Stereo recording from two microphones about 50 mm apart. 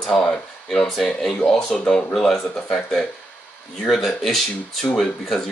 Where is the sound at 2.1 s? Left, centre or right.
Centre.